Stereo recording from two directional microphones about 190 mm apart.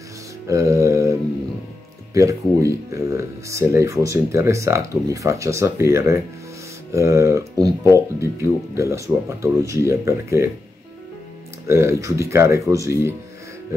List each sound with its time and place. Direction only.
0.5 s mantra: 15° right (ahead or behind)
2.1 s speech: 15° right (ahead or behind)
11.6 s speech: 15° right (ahead or behind)